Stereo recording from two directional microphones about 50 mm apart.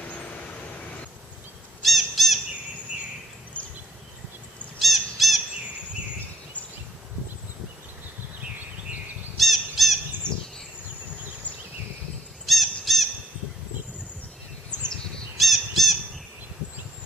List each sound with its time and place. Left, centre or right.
1.8 s squawk: centre
4.7 s squawk: centre
9.4 s squawk: centre
10.2 s bird: right
12.4 s squawk: centre
15.3 s squawk: centre